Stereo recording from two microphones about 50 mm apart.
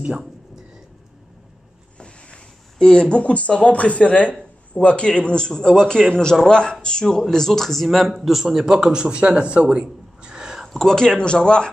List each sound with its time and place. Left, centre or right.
2.0 s a man's voice: left; by 10.7 s centre
10.7 s a man's voice: centre